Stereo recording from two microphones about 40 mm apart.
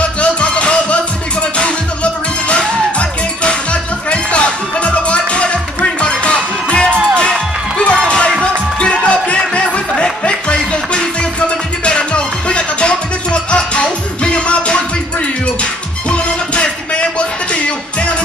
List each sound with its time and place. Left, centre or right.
0.2 s music: left
2.4 s music: left